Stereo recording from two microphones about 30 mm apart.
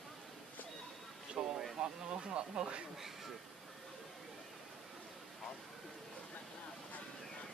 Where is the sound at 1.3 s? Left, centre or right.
Right.